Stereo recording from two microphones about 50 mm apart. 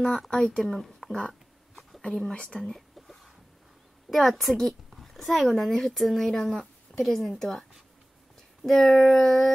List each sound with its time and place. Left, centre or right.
0.0 s speech: centre
0.7 s a sound: centre
2.3 s speech: left
2.6 s whispering: centre
4.1 s a woman's voice: centre